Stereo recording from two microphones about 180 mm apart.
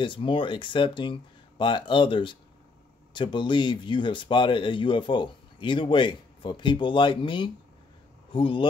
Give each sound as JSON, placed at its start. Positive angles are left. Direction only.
{"t": 0.0, "sound": "speech", "side_deg": 30}